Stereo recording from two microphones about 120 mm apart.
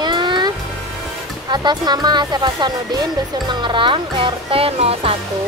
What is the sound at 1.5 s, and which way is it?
Speech, 40° right (ahead or behind).